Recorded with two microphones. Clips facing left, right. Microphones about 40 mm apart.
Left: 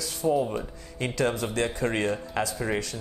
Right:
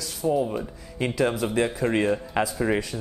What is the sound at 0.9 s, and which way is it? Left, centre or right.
A man's voice, centre.